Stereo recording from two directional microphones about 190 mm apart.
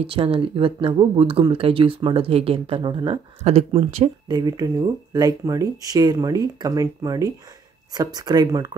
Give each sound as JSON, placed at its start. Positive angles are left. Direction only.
{"t": 0.0, "sound": "speech", "side_deg": -30}